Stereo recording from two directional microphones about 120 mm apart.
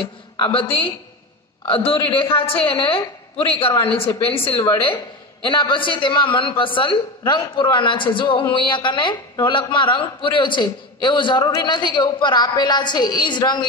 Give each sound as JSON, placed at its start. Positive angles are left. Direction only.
{"t": 0.0, "sound": "a woman's voice", "side_deg": 45}